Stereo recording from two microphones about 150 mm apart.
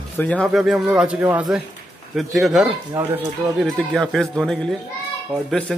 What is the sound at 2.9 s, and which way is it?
Speech, 20° right (ahead or behind).